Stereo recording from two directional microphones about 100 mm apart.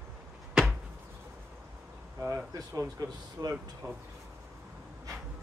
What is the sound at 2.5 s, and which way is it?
Speech, 35° right (ahead or behind).